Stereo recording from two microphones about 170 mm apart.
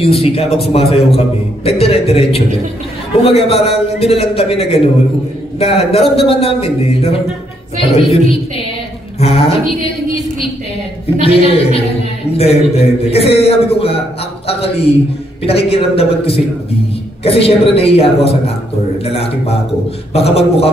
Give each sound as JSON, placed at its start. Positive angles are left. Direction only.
{"t": 0.0, "sound": "a man's voice", "side_deg": 35}
{"t": 9.2, "sound": "a man's voice", "side_deg": 35}
{"t": 11.1, "sound": "a man's voice", "side_deg": 35}
{"t": 20.1, "sound": "a man's voice", "side_deg": 35}